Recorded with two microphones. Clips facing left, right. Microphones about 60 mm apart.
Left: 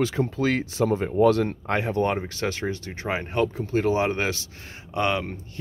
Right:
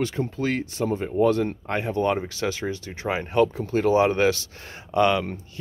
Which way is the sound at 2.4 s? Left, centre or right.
Left.